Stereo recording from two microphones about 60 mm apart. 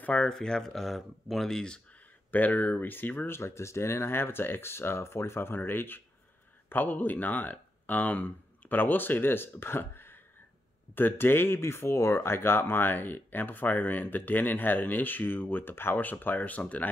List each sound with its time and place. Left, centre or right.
0.0 s speech: left
0.3 s speech: centre
2.3 s speech: left
3.3 s speech: left